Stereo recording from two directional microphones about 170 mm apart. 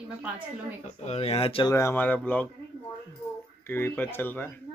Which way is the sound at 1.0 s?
35° left (ahead or behind).